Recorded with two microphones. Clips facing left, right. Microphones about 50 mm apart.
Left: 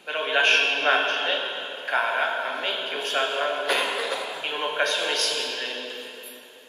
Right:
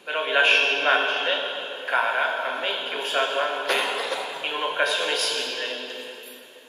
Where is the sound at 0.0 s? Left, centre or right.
Centre.